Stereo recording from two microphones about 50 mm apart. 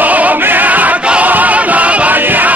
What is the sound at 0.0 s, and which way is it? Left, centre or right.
Opera, right.